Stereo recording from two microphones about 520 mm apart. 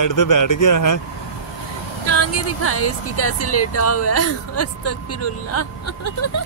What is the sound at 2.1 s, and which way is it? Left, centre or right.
Speech, left.